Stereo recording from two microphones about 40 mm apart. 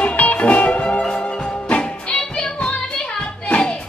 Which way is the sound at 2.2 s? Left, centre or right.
Centre.